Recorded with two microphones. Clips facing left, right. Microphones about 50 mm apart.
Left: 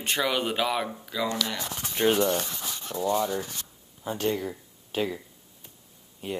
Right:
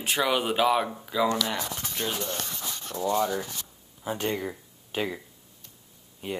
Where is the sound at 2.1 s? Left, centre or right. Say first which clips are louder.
Left 12 dB; left.